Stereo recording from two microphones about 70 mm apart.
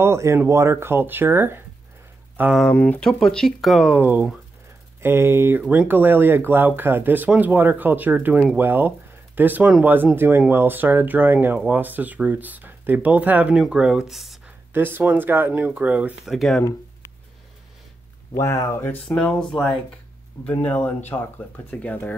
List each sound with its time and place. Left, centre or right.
0.0 s speech: right
2.7 s speech: left
3.0 s speech: centre
4.0 s speech: right
13.6 s speech: centre
14.7 s speech: right
16.3 s speech: centre
18.3 s speech: left
19.0 s speech: centre
20.4 s speech: left